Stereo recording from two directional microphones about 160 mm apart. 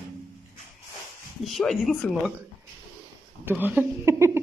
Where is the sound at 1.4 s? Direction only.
Centre (ahead or behind).